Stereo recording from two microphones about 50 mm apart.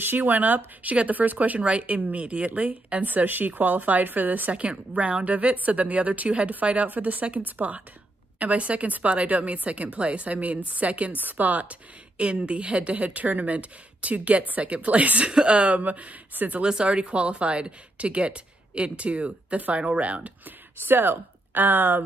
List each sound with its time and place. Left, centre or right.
0.0 s speech: right
16.6 s speech: centre
20.4 s speech: right